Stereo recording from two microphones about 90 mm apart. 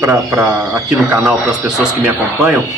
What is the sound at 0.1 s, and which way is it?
Speech, 25° right (ahead or behind).